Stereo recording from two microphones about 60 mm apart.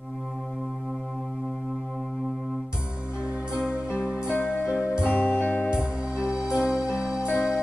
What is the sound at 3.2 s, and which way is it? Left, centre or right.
Music, centre.